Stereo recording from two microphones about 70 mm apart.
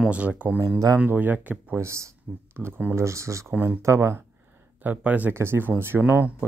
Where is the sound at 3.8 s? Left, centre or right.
Right.